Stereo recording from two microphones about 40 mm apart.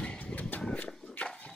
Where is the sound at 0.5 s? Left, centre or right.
Left.